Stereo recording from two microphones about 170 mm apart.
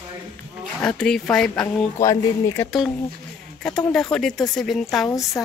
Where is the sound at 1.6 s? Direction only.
20° left (ahead or behind).